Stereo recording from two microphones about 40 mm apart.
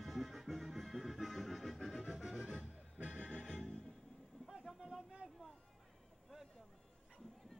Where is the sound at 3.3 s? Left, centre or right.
Centre.